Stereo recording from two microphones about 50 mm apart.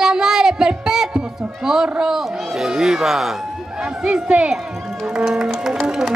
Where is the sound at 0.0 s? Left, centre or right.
Centre.